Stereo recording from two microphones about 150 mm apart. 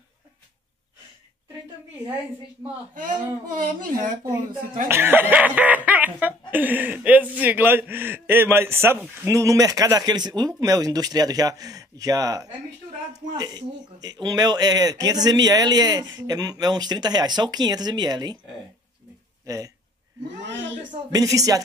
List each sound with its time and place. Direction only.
2.9 s speech: 65° right (ahead or behind)
4.8 s speech: 15° right (ahead or behind)
19.4 s speech: 20° right (ahead or behind)
21.1 s speech: 25° right (ahead or behind)